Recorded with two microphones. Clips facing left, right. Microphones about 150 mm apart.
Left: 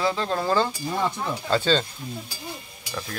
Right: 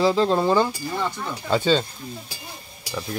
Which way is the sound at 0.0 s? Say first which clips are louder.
Right 6 dB; 30° right (ahead or behind).